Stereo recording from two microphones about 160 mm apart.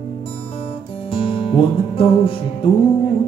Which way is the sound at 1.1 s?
35° left (ahead or behind).